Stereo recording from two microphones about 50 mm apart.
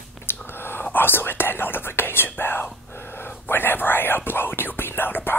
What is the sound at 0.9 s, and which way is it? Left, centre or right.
Speech, left.